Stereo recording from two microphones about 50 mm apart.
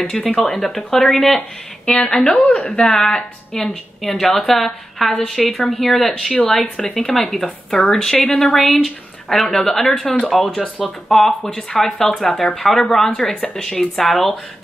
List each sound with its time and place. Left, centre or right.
0.1 s a woman's voice: centre
1.9 s a woman's voice: left; by 5.1 s centre
5.4 s a woman's voice: centre